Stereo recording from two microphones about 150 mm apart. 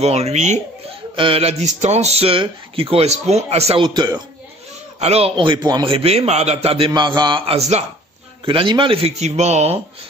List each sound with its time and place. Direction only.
0.0 s speech: 45° right (ahead or behind)
1.1 s speech: 35° right (ahead or behind)
5.0 s a man's voice: 40° right (ahead or behind)
6.9 s a man's voice: 30° right (ahead or behind); by 7.8 s 45° right (ahead or behind)
8.5 s a man's voice: 35° right (ahead or behind)